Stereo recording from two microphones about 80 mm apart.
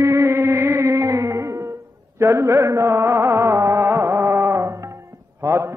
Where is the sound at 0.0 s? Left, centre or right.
Right.